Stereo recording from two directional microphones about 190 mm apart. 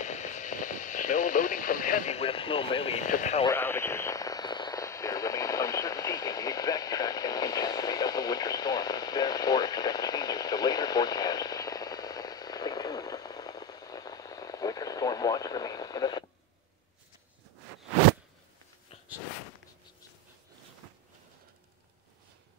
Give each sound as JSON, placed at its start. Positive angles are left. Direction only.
{"t": 0.0, "sound": "radio", "side_deg": 40}
{"t": 3.1, "sound": "speech", "side_deg": 40}
{"t": 3.4, "sound": "radio", "side_deg": 10}